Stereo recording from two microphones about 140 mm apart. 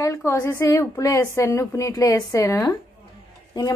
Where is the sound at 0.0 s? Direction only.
20° left (ahead or behind).